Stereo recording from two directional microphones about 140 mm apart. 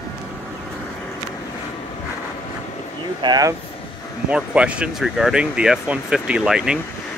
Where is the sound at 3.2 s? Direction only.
25° right (ahead or behind).